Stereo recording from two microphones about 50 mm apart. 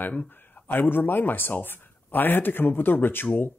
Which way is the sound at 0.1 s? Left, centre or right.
Left.